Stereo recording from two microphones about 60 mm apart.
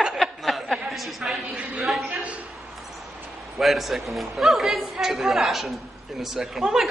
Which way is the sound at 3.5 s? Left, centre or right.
Centre.